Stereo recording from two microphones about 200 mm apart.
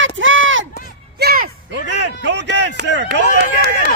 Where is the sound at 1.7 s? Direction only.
60° right (ahead or behind).